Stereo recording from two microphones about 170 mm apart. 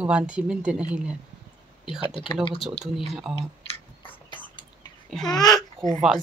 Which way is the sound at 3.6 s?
35° left (ahead or behind).